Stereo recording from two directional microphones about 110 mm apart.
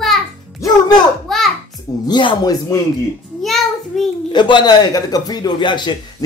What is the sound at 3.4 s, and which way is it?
Child singing, centre (ahead or behind).